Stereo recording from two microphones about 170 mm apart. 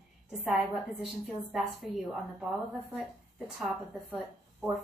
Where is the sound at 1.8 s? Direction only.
Centre (ahead or behind).